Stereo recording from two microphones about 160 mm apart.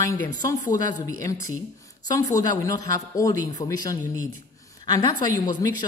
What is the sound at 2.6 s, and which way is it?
A woman's voice, 20° left (ahead or behind).